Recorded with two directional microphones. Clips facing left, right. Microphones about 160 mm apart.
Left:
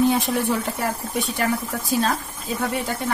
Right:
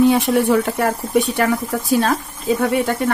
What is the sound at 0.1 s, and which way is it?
Speech, 70° right (ahead or behind).